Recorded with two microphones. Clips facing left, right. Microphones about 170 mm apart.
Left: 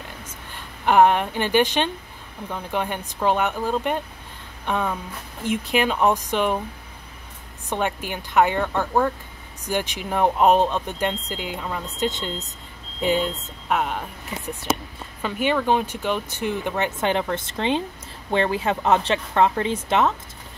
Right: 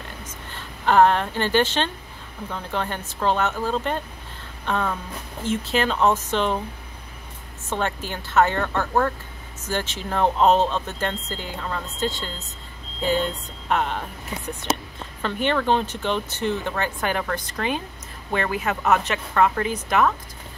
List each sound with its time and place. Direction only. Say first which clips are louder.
0.2 s a sound: right 1 dB; 15° left (ahead or behind)
2.5 s speech: left 2 dB; 15° left (ahead or behind)
7.7 s speech: left 1 dB; 15° left (ahead or behind)
13.7 s speech: even; 5° left (ahead or behind)
15.2 s speech: left 1 dB; 10° left (ahead or behind); by 20.2 s 25° left (ahead or behind)